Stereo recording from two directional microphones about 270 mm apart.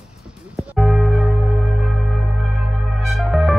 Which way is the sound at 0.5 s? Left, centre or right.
Centre.